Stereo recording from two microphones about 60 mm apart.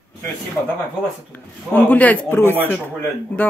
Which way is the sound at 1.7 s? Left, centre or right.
Left.